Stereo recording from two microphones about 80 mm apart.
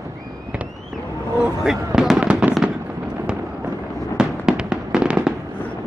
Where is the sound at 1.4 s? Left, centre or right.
Centre.